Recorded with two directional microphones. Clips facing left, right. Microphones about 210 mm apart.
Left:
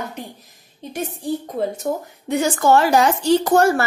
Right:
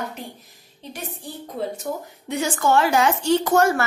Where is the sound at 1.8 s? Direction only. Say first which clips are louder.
Left 5 dB; 50° left (ahead or behind).